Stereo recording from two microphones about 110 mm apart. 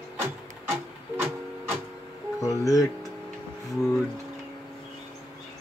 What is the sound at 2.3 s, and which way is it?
Music, 30° left (ahead or behind).